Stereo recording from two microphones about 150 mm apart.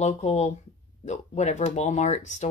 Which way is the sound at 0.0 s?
50° left (ahead or behind).